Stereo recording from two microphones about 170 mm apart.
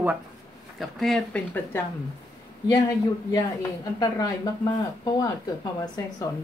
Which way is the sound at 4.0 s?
25° left (ahead or behind).